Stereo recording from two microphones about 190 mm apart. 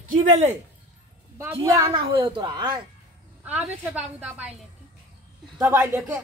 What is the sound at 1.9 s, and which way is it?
Speech, 25° right (ahead or behind).